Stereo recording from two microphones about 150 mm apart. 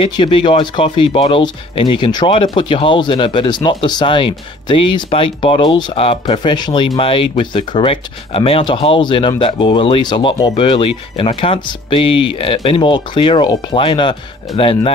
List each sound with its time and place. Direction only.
0.0 s speech: 35° left (ahead or behind)